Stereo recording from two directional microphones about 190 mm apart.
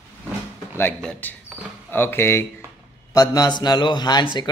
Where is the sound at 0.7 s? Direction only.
10° left (ahead or behind).